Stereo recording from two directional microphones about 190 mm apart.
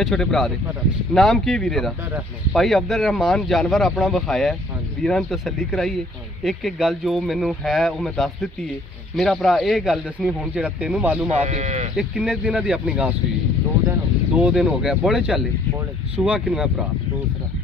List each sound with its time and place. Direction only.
0.0 s speech: centre (ahead or behind)
11.2 s speech: 35° right (ahead or behind)
12.0 s speech: 5° right (ahead or behind)